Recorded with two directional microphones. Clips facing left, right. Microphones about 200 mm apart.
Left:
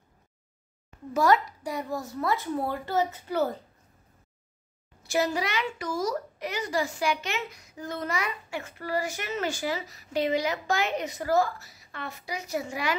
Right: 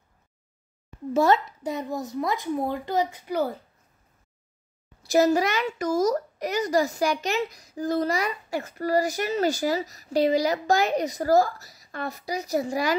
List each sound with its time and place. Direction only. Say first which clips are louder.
1.1 s a child's voice: right 2 dB; 25° right (ahead or behind)
5.0 s a woman's voice: right 7 dB; 40° right (ahead or behind)